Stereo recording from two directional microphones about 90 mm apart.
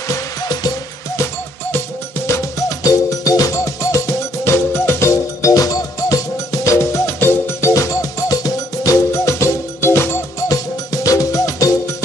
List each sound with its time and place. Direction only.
0.1 s music: 45° left (ahead or behind)
1.1 s music: 30° left (ahead or behind)
10.5 s music: 40° left (ahead or behind)